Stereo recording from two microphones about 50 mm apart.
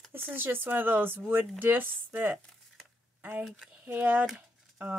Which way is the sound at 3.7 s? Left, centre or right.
Right.